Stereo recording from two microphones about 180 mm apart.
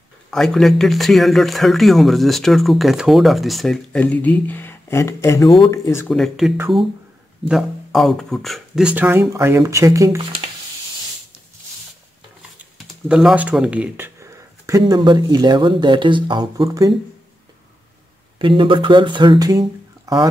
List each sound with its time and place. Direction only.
0.3 s speech: centre (ahead or behind)
6.0 s speech: centre (ahead or behind); by 10.2 s 20° right (ahead or behind)
12.7 s speech: centre (ahead or behind); by 16.9 s 20° right (ahead or behind)
18.4 s speech: 30° right (ahead or behind)